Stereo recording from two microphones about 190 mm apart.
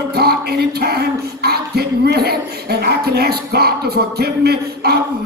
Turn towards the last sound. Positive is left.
turn(degrees=-55)  # may be behind; listen again after turning